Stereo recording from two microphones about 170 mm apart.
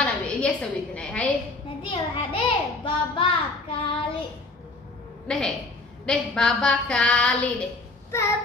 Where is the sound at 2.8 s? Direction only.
30° left (ahead or behind).